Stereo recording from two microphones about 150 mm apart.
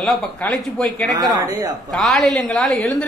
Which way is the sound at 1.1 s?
25° right (ahead or behind).